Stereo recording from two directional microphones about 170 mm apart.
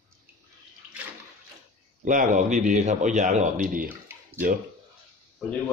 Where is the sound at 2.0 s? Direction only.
50° right (ahead or behind).